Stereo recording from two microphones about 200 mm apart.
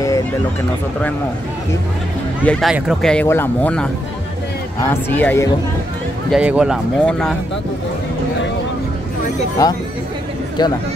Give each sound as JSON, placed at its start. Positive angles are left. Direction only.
{"t": 2.4, "sound": "speech", "side_deg": 5}
{"t": 6.3, "sound": "speech", "side_deg": -5}
{"t": 9.6, "sound": "speech", "side_deg": 15}